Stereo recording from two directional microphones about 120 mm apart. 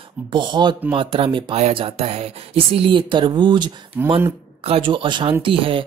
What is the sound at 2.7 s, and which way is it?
Speech, 45° right (ahead or behind).